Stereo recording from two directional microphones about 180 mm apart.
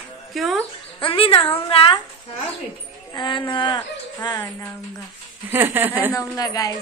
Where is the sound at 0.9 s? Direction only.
30° left (ahead or behind).